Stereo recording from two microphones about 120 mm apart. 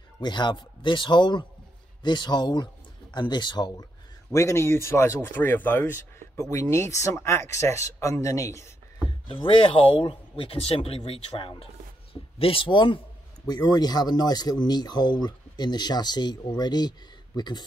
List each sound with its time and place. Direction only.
0.2 s speech: 40° left (ahead or behind)
4.3 s speech: 25° left (ahead or behind)
9.3 s speech: 45° left (ahead or behind)